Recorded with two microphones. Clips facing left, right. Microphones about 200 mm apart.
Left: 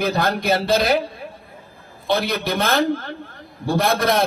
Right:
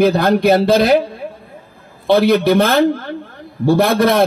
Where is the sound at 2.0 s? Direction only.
55° right (ahead or behind).